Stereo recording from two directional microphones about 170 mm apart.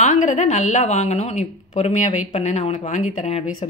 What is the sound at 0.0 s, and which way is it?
A woman's voice, 45° left (ahead or behind).